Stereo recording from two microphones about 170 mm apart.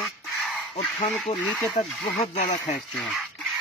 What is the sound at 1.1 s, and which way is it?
Speech, centre (ahead or behind).